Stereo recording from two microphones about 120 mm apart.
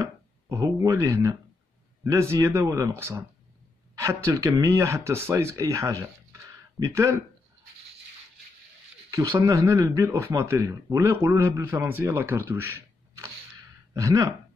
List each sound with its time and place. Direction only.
0.0 s speech: 25° right (ahead or behind)
9.1 s speech: 25° right (ahead or behind)